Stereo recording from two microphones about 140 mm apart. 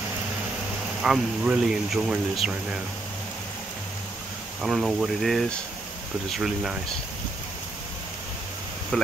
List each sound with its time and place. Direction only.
1.0 s speech: 5° right (ahead or behind)
4.6 s speech: 5° right (ahead or behind)
8.9 s speech: 5° left (ahead or behind)